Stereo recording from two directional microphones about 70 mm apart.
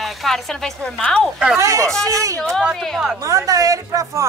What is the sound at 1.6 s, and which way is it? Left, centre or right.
Speech, right.